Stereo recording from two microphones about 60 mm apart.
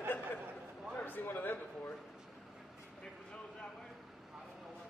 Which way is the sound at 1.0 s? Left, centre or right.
Left.